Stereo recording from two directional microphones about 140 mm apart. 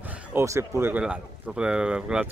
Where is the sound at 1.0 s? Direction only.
5° right (ahead or behind).